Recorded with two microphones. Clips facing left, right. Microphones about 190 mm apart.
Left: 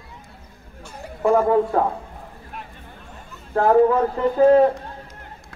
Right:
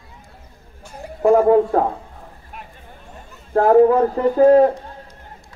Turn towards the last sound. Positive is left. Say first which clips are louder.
# right 2 dB
turn(degrees=-40)  # may be behind; listen again after turning